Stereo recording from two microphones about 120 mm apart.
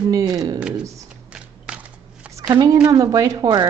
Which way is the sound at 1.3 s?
10° right (ahead or behind).